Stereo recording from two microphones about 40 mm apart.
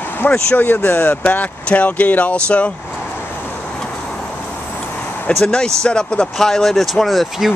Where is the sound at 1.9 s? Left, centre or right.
Left.